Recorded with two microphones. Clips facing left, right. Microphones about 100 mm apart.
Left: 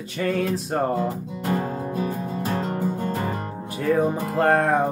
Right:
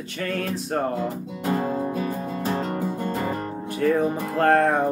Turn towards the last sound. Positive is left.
turn(degrees=0)  # may be behind; listen again after turning